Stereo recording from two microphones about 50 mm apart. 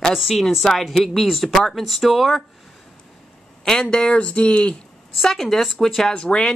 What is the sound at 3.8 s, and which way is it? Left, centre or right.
Speech, left.